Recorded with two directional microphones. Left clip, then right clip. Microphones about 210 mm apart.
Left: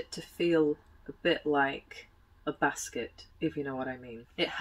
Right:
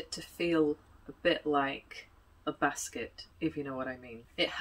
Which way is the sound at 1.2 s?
Centre (ahead or behind).